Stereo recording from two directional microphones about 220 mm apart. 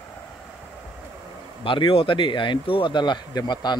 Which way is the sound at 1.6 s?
25° left (ahead or behind).